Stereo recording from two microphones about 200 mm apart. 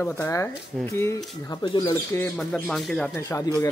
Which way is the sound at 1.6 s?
25° left (ahead or behind).